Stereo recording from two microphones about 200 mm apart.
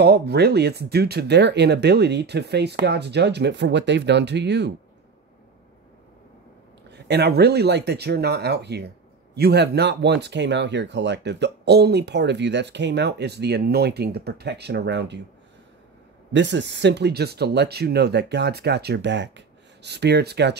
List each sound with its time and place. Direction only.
0.0 s speech: 55° right (ahead or behind)
6.9 s speech: 55° right (ahead or behind)
16.3 s speech: 60° right (ahead or behind)